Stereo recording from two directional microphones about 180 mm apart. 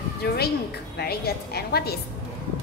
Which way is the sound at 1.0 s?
60° left (ahead or behind).